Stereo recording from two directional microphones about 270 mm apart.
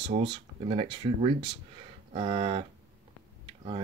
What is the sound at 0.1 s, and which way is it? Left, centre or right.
Speech, centre.